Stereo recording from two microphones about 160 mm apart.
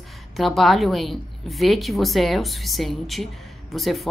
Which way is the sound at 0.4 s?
Centre (ahead or behind).